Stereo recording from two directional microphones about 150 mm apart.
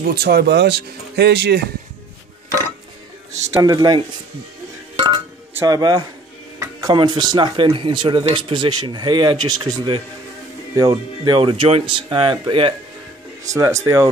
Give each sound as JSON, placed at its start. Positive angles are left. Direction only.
{"t": 0.0, "sound": "speech", "side_deg": -90}
{"t": 3.5, "sound": "speech", "side_deg": -25}
{"t": 4.9, "sound": "chink", "side_deg": -30}
{"t": 5.7, "sound": "speech", "side_deg": -25}
{"t": 13.4, "sound": "speech", "side_deg": -20}